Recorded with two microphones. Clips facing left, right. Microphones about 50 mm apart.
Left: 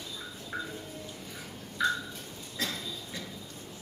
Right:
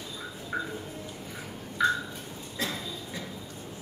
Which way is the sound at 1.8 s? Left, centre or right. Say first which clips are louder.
Right 4 dB; centre.